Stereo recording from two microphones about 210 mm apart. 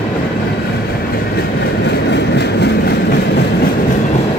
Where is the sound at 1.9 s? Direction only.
55° left (ahead or behind).